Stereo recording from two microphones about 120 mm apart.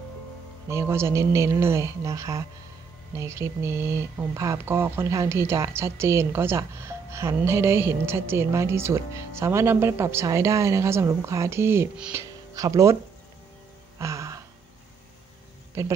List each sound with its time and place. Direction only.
0.7 s a woman's voice: 25° right (ahead or behind)
13.9 s a sound: 25° right (ahead or behind)
15.8 s a woman's voice: 25° right (ahead or behind)